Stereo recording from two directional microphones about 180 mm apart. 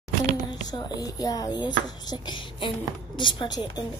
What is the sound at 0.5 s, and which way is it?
A child's voice, 25° left (ahead or behind).